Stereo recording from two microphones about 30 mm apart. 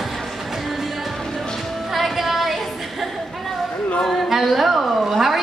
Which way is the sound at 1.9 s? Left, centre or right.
Centre.